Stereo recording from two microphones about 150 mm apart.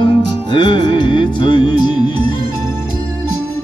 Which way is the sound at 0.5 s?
30° left (ahead or behind).